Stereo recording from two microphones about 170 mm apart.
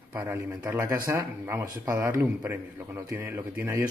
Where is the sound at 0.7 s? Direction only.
20° right (ahead or behind).